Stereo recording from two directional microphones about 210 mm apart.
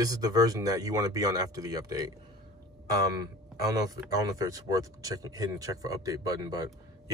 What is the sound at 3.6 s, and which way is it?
Speech, 15° right (ahead or behind).